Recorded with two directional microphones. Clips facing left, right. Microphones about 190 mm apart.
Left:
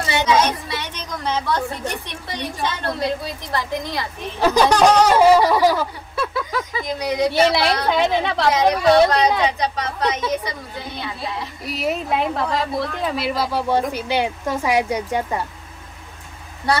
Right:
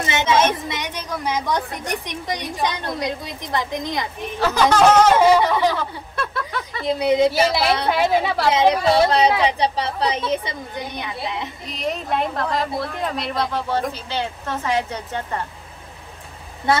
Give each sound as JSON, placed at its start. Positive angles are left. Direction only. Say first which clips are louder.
{"t": 0.0, "sound": "a sound", "louder": "even", "side_deg": -20}
{"t": 0.7, "sound": "a woman's voice", "louder": "right 1 dB", "side_deg": -15}
{"t": 4.4, "sound": "speech", "louder": "left 1 dB", "side_deg": 15}
{"t": 6.9, "sound": "speech", "louder": "right 5 dB", "side_deg": -25}
{"t": 7.3, "sound": "a woman's voice", "louder": "left 1 dB", "side_deg": 0}
{"t": 8.5, "sound": "speech", "louder": "left 2 dB", "side_deg": -25}
{"t": 11.6, "sound": "speech", "louder": "left 5 dB", "side_deg": 5}